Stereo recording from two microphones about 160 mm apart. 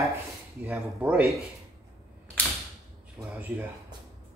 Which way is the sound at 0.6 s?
10° right (ahead or behind).